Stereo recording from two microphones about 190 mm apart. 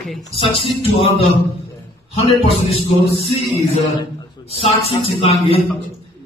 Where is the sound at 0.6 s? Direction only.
30° left (ahead or behind).